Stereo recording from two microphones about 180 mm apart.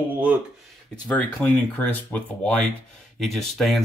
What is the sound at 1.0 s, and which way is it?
Speech, 10° left (ahead or behind).